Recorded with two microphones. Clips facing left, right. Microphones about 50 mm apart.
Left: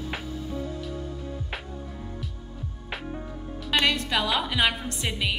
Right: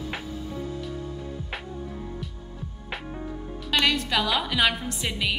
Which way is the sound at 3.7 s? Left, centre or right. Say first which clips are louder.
Even; centre.